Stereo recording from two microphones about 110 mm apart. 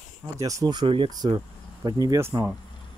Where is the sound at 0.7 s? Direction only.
45° right (ahead or behind).